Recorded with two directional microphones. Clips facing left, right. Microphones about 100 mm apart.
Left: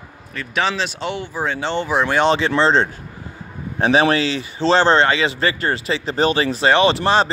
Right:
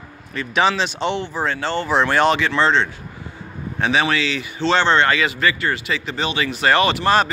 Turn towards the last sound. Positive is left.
turn(degrees=25)  # may be behind; listen again after turning